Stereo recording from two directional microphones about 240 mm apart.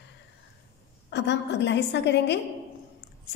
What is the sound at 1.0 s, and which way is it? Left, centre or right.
A woman's voice, left.